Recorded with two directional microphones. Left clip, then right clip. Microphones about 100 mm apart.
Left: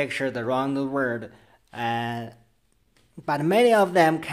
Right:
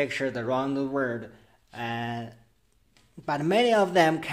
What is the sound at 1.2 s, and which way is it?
Speech, 45° left (ahead or behind).